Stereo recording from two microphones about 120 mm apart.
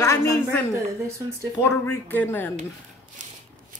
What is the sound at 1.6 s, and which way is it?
Speech, 15° left (ahead or behind).